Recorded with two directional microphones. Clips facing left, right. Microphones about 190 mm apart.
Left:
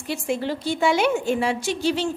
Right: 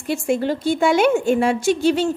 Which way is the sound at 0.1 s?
50° right (ahead or behind).